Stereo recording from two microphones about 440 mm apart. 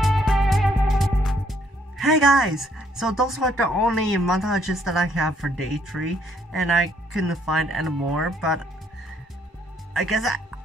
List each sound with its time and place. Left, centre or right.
0.0 s music: centre
9.9 s speech: centre